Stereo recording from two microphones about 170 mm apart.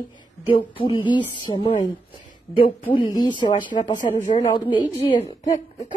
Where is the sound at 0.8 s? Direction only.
30° left (ahead or behind).